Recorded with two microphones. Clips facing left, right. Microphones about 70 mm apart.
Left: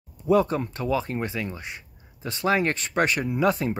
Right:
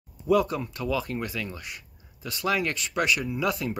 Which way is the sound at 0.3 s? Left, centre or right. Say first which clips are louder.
Left 2 dB; left.